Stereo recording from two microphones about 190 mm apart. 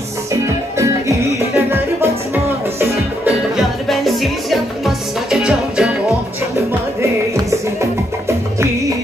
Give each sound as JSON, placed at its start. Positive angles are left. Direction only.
{"t": 0.3, "sound": "music", "side_deg": -15}
{"t": 6.5, "sound": "music", "side_deg": -15}